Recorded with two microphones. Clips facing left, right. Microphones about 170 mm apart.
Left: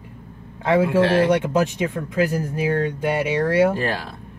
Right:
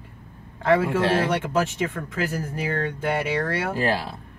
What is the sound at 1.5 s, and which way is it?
Speech, 15° left (ahead or behind).